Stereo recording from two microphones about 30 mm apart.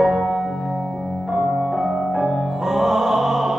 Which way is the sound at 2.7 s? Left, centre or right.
Centre.